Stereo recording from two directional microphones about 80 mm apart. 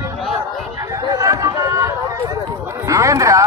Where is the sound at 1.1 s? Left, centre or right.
Right.